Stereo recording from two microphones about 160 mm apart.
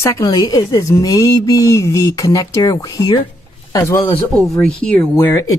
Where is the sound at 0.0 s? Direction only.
15° left (ahead or behind).